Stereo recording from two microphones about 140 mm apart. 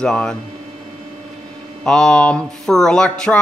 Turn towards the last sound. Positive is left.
turn(degrees=5)  # may be behind; listen again after turning